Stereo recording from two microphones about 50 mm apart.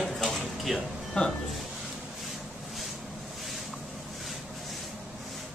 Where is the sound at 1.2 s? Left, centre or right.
Left.